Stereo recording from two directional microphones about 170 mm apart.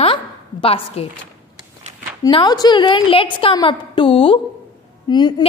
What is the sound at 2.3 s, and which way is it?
A woman's voice, 25° left (ahead or behind).